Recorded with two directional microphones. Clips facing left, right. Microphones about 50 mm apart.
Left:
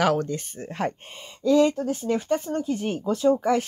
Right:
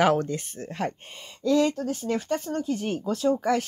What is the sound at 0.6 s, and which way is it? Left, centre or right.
Speech, left.